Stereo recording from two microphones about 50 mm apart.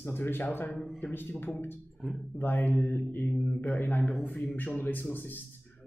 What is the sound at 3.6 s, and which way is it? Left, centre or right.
Speech, left.